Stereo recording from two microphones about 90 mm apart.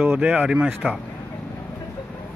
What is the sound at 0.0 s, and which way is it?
Speech, 15° right (ahead or behind).